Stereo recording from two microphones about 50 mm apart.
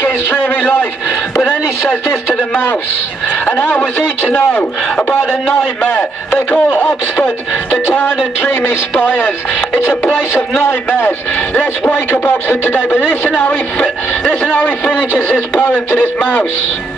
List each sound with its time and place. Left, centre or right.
0.4 s a man's voice: left
3.4 s a man's voice: left
5.8 s a man's voice: left
11.6 s a man's voice: left
13.7 s speech: left